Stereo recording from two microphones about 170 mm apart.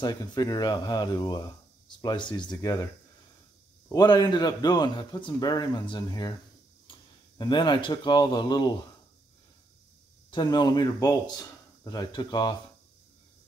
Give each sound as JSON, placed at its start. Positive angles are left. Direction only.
{"t": 0.0, "sound": "a man's voice", "side_deg": 25}
{"t": 3.9, "sound": "a man's voice", "side_deg": 25}
{"t": 6.9, "sound": "a sound", "side_deg": 30}
{"t": 7.3, "sound": "a man's voice", "side_deg": 25}
{"t": 10.3, "sound": "a man's voice", "side_deg": 25}